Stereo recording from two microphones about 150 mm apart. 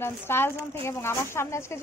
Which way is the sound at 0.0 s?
15° left (ahead or behind).